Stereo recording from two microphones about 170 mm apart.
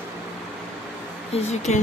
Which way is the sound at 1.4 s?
45° left (ahead or behind).